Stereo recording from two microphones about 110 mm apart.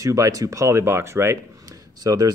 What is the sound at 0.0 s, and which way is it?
Speech, 30° right (ahead or behind).